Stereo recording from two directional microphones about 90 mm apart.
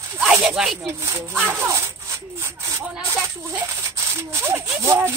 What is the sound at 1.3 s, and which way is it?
Speech, 20° right (ahead or behind).